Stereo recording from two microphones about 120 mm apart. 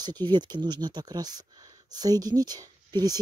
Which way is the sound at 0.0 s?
40° right (ahead or behind).